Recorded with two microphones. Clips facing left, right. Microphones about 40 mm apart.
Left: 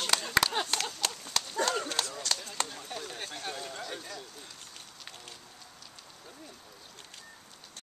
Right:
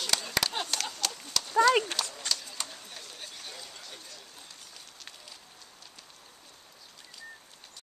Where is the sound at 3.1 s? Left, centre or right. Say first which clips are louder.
Left 6 dB; left.